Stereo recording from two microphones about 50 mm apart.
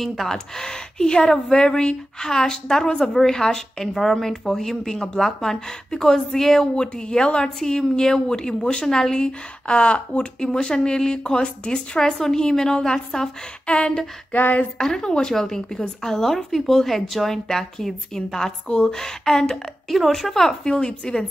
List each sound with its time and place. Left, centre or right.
0.0 s a woman's voice: centre
14.3 s a sound: left
14.8 s a woman's voice: centre